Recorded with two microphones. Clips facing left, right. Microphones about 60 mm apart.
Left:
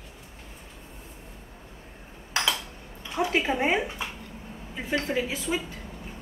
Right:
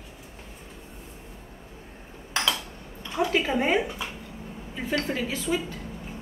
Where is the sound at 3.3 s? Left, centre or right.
Centre.